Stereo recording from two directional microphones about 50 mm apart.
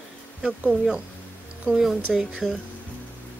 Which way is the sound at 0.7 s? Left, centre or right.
Centre.